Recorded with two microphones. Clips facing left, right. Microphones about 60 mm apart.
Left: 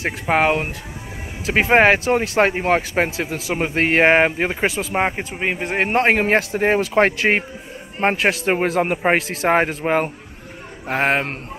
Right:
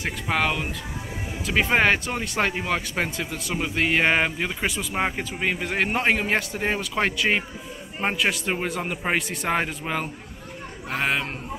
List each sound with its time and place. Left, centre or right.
0.0 s speech: left
4.9 s speech: left
5.9 s speech: left
8.9 s speech: left